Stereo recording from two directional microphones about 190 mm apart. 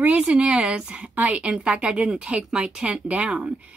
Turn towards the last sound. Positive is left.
turn(degrees=-5)  # may be behind; listen again after turning